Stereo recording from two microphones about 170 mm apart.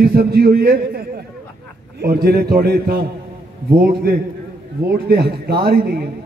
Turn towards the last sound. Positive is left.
turn(degrees=-65)  # may be behind; listen again after turning